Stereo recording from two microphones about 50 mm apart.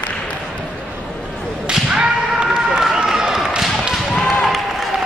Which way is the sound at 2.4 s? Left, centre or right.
Centre.